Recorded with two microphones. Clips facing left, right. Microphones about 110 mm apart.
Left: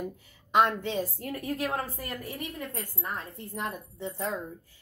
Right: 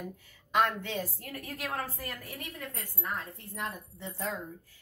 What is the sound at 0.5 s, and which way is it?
A woman's voice, 25° left (ahead or behind).